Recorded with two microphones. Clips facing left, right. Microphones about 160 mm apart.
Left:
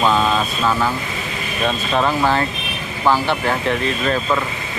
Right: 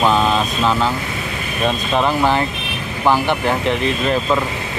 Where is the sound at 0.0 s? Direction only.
15° right (ahead or behind).